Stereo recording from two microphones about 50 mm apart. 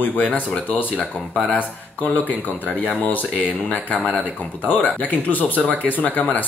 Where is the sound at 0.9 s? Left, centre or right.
Centre.